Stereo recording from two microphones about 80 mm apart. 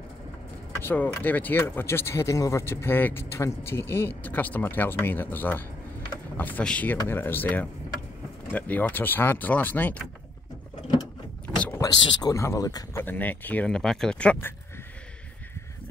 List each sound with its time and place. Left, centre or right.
0.7 s speech: left
7.1 s speech: left
11.4 s vehicle: centre
11.8 s speech: left
12.3 s speech: left
12.9 s speech: left
13.7 s speech: centre